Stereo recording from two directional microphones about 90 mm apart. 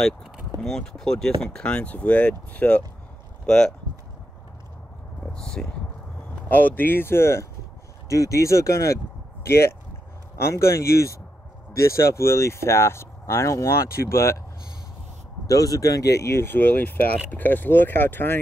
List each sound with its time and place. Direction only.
0.6 s speech: 5° left (ahead or behind)
5.3 s speech: 5° left (ahead or behind)
6.5 s speech: 20° left (ahead or behind)
15.4 s speech: 40° left (ahead or behind); by 18.4 s 25° left (ahead or behind)